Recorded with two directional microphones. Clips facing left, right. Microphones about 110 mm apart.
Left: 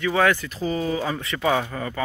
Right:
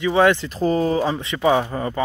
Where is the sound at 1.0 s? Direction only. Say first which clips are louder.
Right 4 dB; 20° right (ahead or behind).